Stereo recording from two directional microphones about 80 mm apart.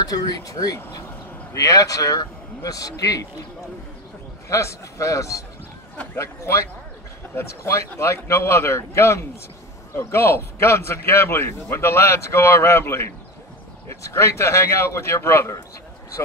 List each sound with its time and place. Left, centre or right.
0.0 s speech: left
4.5 s a man's voice: left